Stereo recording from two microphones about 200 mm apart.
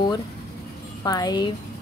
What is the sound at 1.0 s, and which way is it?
Speech, 20° left (ahead or behind).